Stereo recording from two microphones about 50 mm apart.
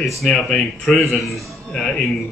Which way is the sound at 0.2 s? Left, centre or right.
Centre.